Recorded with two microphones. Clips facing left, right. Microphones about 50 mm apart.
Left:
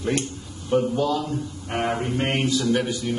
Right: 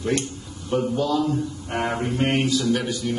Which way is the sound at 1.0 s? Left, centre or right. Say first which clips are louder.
Right 2 dB; centre.